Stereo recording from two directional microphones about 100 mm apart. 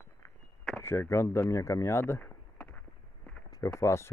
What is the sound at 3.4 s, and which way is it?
Run, 35° left (ahead or behind).